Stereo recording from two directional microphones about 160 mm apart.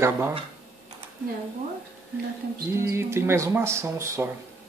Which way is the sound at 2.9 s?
15° right (ahead or behind).